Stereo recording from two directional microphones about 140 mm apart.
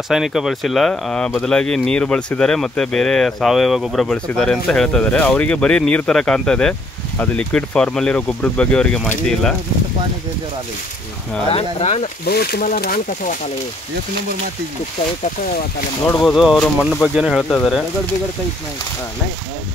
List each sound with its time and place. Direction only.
0.1 s speech: 5° right (ahead or behind)
11.4 s speech: 50° left (ahead or behind)
12.4 s speech: 90° left
16.2 s speech: centre (ahead or behind)